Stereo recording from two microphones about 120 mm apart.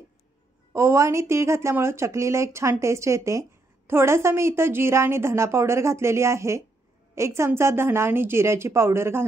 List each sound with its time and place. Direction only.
0.7 s a woman's voice: 25° right (ahead or behind)